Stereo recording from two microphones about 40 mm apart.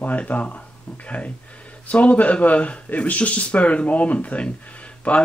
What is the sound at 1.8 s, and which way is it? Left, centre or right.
Speech, left.